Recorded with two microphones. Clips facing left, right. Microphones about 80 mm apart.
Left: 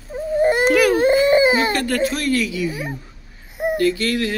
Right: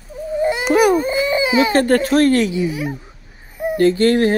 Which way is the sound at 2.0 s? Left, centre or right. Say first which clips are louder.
Right 6 dB; right.